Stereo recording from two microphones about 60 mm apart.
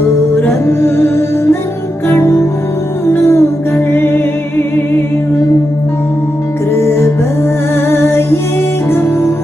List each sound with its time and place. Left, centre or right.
0.5 s music: left
7.7 s music: left